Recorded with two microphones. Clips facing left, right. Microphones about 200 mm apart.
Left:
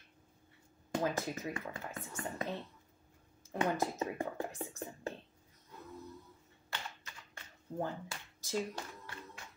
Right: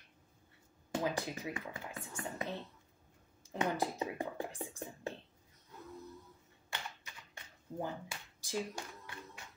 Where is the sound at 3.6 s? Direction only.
15° right (ahead or behind).